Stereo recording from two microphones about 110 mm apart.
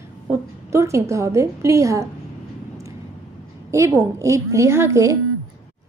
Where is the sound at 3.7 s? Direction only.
30° right (ahead or behind).